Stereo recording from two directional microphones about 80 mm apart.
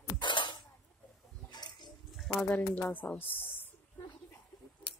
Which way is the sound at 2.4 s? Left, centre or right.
Left.